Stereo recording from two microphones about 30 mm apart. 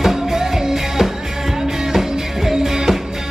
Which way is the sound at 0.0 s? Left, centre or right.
Centre.